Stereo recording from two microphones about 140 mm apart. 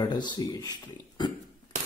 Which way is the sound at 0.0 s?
30° left (ahead or behind).